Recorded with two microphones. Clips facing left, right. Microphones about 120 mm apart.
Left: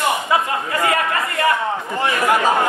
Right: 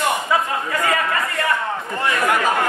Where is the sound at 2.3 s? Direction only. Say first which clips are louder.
Left 3 dB; 25° left (ahead or behind).